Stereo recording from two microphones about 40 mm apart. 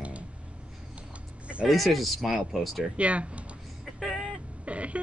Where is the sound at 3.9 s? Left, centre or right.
Centre.